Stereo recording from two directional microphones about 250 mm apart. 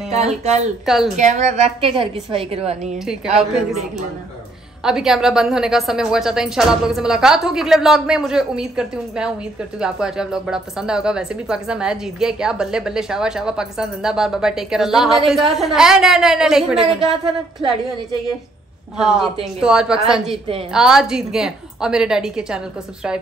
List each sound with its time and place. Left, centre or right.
0.8 s speech: centre
1.1 s a woman's voice: right
3.3 s speech: centre
4.8 s speech: centre
17.0 s a woman's voice: right
18.9 s speech: centre